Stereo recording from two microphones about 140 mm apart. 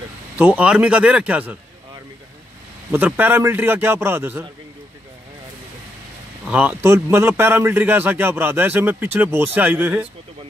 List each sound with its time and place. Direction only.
0.4 s a man's voice: 10° right (ahead or behind)
2.9 s a man's voice: 15° right (ahead or behind)
6.4 s a man's voice: 10° right (ahead or behind)